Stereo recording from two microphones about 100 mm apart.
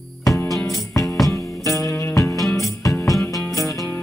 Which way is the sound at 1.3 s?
30° left (ahead or behind).